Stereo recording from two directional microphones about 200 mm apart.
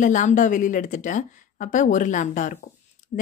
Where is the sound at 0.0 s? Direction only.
40° left (ahead or behind).